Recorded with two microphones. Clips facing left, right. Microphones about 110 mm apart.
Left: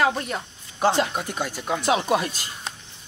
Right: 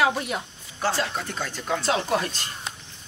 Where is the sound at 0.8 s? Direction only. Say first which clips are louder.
Left 5 dB; 20° left (ahead or behind).